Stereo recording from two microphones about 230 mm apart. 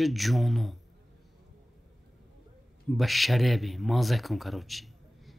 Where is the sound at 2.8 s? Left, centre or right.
Centre.